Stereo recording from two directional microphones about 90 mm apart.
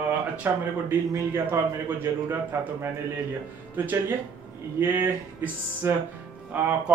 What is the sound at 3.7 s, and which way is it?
Speech, 20° right (ahead or behind).